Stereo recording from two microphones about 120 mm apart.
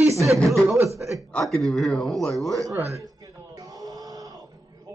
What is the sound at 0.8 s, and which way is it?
Speech, 25° right (ahead or behind).